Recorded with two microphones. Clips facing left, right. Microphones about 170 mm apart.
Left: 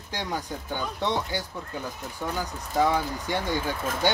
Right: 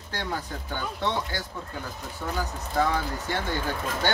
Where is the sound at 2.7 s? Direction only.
15° left (ahead or behind).